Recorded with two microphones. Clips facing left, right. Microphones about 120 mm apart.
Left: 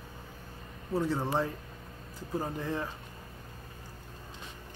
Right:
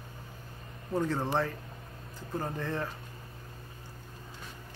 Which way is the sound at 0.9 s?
5° left (ahead or behind).